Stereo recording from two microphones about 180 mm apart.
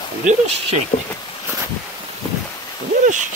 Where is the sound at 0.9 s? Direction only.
55° left (ahead or behind).